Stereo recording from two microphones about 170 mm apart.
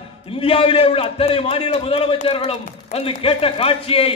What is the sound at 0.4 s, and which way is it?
A man's voice, 35° left (ahead or behind).